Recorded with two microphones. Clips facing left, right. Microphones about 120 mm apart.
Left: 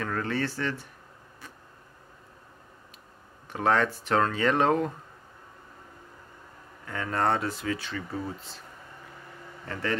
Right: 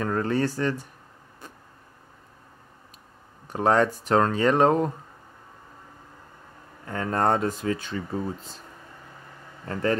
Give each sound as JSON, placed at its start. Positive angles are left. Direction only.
{"t": 0.0, "sound": "speech", "side_deg": -35}
{"t": 3.5, "sound": "speech", "side_deg": -35}
{"t": 6.9, "sound": "speech", "side_deg": -35}
{"t": 9.7, "sound": "speech", "side_deg": -40}